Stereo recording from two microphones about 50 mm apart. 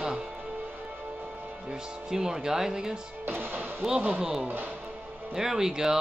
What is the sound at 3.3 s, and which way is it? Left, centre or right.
Music, right.